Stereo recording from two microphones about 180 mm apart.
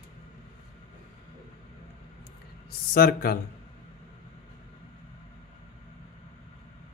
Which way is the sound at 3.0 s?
55° left (ahead or behind).